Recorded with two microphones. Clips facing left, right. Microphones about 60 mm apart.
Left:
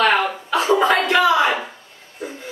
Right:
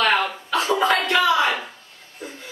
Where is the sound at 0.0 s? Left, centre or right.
Centre.